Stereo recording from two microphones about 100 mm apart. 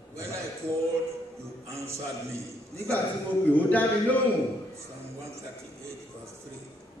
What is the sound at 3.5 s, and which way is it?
Speech, 15° left (ahead or behind).